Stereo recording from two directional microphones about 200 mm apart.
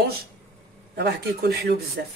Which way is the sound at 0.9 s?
55° right (ahead or behind).